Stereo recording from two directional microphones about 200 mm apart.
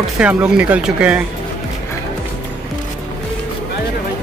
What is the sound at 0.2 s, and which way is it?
Speech, 5° right (ahead or behind).